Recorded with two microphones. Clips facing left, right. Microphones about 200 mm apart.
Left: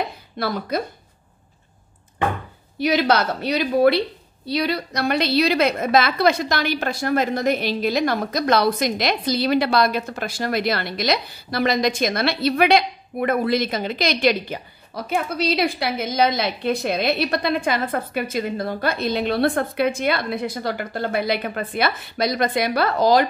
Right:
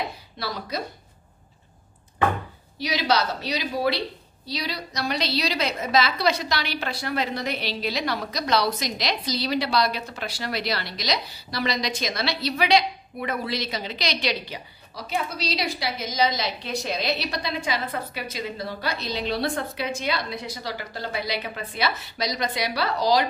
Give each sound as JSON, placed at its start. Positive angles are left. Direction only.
{"t": 0.4, "sound": "a woman's voice", "side_deg": 55}
{"t": 2.8, "sound": "a woman's voice", "side_deg": 55}